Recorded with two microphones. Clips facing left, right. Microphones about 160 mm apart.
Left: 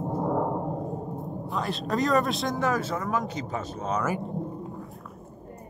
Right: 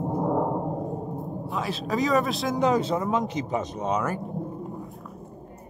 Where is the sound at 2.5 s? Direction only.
20° right (ahead or behind).